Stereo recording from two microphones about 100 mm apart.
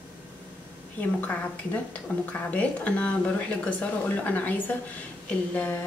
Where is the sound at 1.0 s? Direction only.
15° left (ahead or behind).